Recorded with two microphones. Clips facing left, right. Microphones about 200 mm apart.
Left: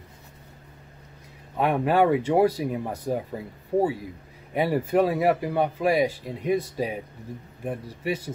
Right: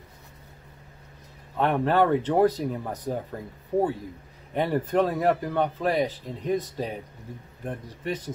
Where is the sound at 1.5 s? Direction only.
10° left (ahead or behind).